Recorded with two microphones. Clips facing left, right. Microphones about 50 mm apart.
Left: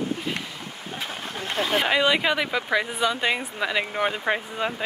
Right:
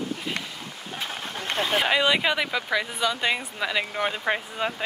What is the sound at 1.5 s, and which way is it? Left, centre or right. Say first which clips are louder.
Speech: left 1 dB; right.